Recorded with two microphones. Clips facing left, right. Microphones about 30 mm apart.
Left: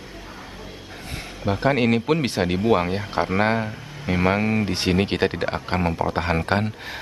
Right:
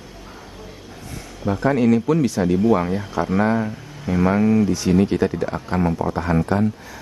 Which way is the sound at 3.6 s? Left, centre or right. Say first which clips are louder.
Right 3 dB; centre.